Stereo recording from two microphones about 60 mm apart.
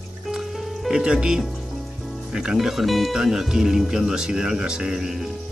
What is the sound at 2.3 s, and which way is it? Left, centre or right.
Speech, centre.